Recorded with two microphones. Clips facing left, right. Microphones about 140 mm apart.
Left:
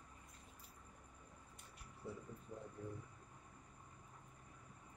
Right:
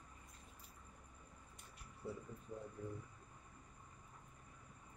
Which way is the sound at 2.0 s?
Centre (ahead or behind).